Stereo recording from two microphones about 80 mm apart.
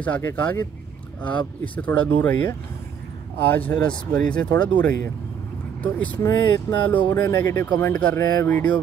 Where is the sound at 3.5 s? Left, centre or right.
Centre.